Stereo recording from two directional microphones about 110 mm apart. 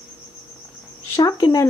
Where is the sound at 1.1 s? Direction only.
30° left (ahead or behind).